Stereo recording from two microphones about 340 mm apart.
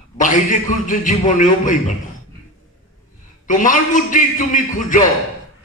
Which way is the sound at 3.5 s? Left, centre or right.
Left.